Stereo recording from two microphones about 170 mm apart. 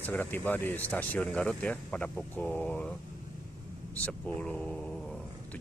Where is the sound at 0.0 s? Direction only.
10° left (ahead or behind).